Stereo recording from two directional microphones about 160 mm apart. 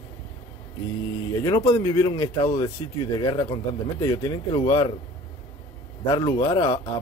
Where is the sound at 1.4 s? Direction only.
25° left (ahead or behind).